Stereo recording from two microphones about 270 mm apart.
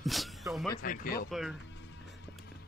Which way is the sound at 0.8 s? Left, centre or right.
Left.